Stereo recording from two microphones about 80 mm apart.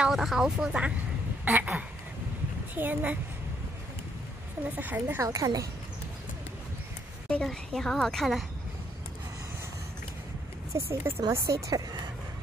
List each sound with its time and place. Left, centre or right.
0.0 s speech: centre
1.4 s duck: right
2.7 s a child's voice: right
4.7 s a child's voice: right
5.2 s a woman's voice: right
7.2 s a woman's voice: centre
10.7 s speech: right